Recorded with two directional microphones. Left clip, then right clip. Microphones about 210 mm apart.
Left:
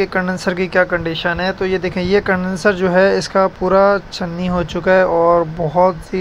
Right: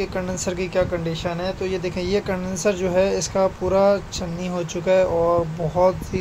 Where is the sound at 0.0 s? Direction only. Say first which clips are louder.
Left 8 dB; 20° left (ahead or behind).